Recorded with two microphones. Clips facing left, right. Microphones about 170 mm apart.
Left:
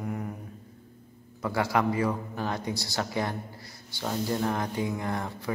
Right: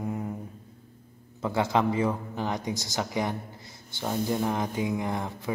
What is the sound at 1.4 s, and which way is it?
A man's voice, 20° right (ahead or behind).